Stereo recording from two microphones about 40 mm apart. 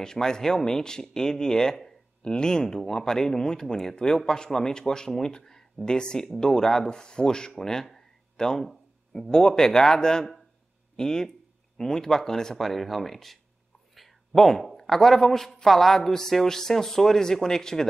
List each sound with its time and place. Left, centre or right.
0.0 s a man's voice: centre
7.5 s a sound: centre
9.1 s a man's voice: centre
12.5 s a man's voice: centre